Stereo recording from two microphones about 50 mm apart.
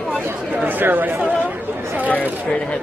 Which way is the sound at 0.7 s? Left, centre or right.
Right.